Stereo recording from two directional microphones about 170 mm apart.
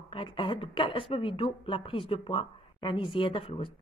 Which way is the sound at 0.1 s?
30° left (ahead or behind).